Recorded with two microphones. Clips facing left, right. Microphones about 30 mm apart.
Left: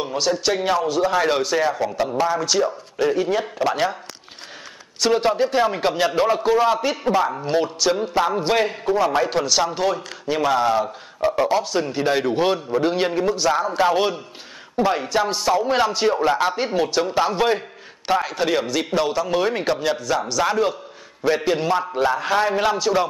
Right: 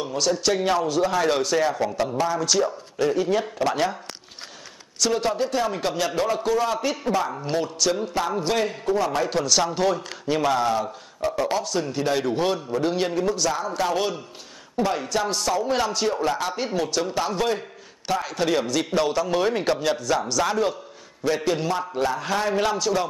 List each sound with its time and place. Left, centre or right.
0.0 s speech: centre
5.0 s a man's voice: left